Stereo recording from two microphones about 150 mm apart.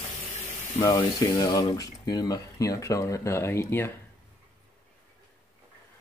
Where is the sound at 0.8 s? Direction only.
25° left (ahead or behind).